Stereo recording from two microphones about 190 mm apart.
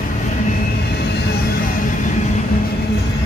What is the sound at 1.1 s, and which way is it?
Music, 50° left (ahead or behind).